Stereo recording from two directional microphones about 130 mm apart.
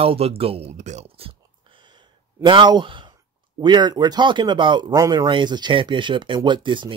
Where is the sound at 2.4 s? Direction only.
35° right (ahead or behind).